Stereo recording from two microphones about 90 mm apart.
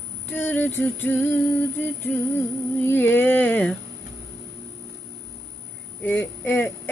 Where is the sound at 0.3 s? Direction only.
20° left (ahead or behind).